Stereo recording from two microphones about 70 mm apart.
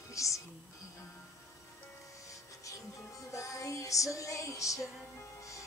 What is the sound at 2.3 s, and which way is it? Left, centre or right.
Music, left.